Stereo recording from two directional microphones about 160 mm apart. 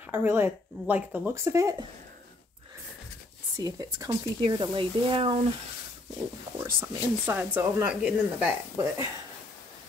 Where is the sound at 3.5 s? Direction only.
20° right (ahead or behind).